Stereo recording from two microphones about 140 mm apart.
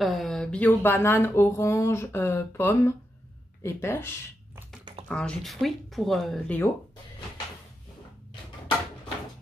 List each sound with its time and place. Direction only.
0.0 s speech: centre (ahead or behind); by 4.1 s 20° left (ahead or behind)
5.0 s speech: 5° left (ahead or behind)